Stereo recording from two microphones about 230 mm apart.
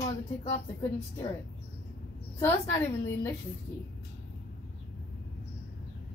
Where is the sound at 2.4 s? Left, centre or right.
Centre.